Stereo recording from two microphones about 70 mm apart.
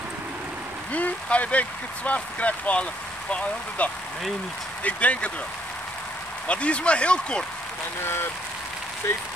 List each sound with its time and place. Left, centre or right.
0.9 s speech: left
6.4 s a man's voice: centre
8.0 s speech: left